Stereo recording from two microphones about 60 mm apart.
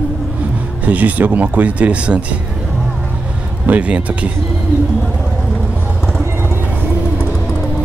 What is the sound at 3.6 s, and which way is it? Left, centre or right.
Speech, right.